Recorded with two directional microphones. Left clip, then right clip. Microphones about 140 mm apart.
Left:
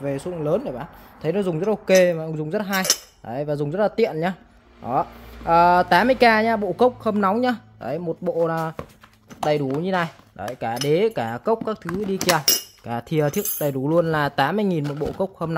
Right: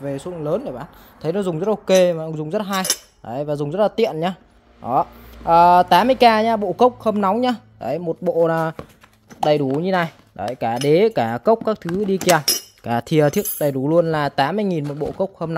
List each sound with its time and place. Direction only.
0.0 s speech: 10° right (ahead or behind); by 8.5 s 35° right (ahead or behind)
8.5 s speech: 55° right (ahead or behind)
9.8 s cutlery: 55° right (ahead or behind)
10.9 s speech: 75° right (ahead or behind)
12.8 s speech: 55° right (ahead or behind)
13.6 s speech: 25° right (ahead or behind)